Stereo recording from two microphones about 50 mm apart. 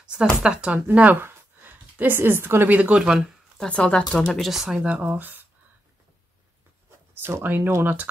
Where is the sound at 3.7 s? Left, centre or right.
Centre.